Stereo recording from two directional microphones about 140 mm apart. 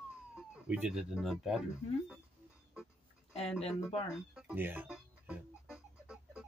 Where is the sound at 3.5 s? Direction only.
45° left (ahead or behind).